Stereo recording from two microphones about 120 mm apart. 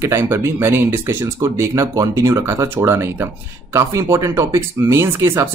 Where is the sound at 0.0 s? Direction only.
20° right (ahead or behind).